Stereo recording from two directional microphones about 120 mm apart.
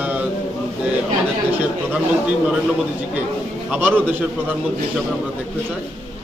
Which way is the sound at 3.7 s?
15° right (ahead or behind).